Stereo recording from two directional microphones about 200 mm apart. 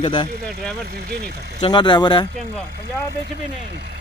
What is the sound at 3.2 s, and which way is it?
Speech, 50° right (ahead or behind).